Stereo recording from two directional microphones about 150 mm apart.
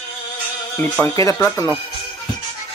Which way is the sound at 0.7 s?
15° left (ahead or behind).